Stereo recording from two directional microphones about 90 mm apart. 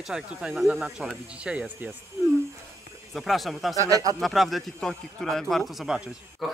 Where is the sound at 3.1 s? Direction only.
Centre (ahead or behind).